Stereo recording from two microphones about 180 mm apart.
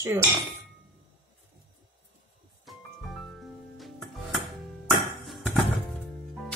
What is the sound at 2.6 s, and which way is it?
Music, centre (ahead or behind).